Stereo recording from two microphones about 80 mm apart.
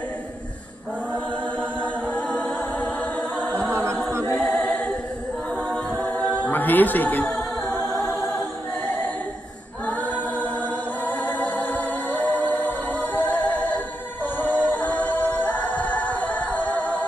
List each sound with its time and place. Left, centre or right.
1.1 s chant: centre
2.1 s a capella: centre
3.7 s a capella: right
4.4 s a capella: centre
5.7 s a capella: left
6.4 s speech: left
9.8 s choir: left
11.1 s music: centre
14.2 s a capella: left